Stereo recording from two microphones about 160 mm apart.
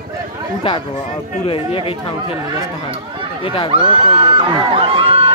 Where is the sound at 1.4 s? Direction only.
35° left (ahead or behind).